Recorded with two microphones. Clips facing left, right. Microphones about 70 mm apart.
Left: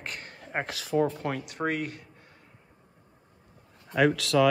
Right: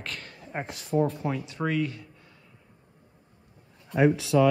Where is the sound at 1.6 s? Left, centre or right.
Centre.